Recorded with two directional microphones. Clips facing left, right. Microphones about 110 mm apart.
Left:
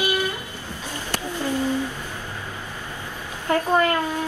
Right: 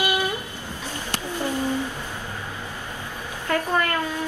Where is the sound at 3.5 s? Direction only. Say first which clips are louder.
Left 4 dB; 20° left (ahead or behind).